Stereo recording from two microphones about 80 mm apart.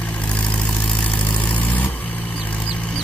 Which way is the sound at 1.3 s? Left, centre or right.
Centre.